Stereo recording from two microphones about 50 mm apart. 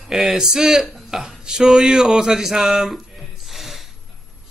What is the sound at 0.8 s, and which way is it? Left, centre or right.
Burping, centre.